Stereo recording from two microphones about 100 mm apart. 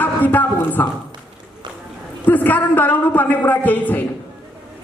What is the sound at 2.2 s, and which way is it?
A man's voice, 15° left (ahead or behind).